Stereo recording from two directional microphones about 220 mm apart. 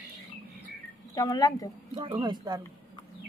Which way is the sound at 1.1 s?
15° left (ahead or behind).